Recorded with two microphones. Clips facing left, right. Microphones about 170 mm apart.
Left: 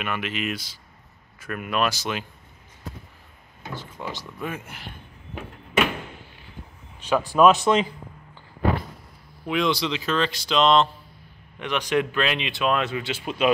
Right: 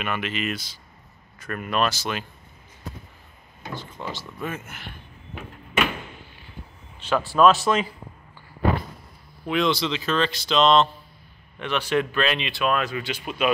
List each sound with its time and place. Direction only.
0.0 s speech: 5° left (ahead or behind)
3.7 s speech: 10° left (ahead or behind)
7.1 s speech: 10° left (ahead or behind)
9.5 s speech: 10° left (ahead or behind); by 13.5 s 25° left (ahead or behind)